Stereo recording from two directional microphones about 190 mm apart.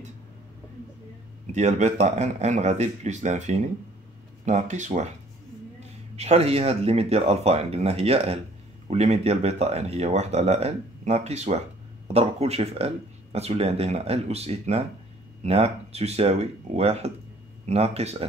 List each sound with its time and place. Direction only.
1.5 s speech: 35° right (ahead or behind)